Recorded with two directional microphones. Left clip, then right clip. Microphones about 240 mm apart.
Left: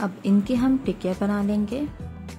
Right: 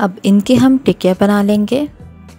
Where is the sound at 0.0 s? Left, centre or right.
Right.